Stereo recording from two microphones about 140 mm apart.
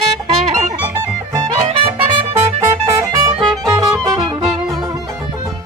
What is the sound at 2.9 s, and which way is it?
Music, 25° right (ahead or behind).